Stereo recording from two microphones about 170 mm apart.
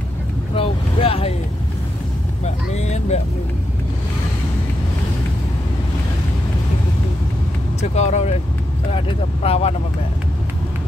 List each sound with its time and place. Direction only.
0.6 s boat: 35° left (ahead or behind)
2.4 s speech: 40° left (ahead or behind)
7.9 s speech: 40° left (ahead or behind)